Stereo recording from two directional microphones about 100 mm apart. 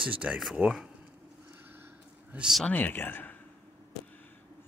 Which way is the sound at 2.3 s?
10° right (ahead or behind).